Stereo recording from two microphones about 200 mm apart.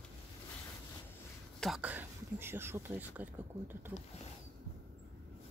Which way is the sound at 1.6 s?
5° right (ahead or behind).